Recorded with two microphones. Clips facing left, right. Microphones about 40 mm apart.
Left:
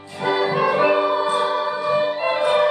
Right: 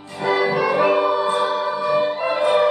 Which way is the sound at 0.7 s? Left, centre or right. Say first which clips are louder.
Even; centre.